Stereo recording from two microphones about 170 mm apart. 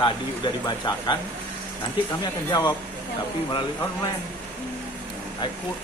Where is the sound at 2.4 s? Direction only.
20° left (ahead or behind).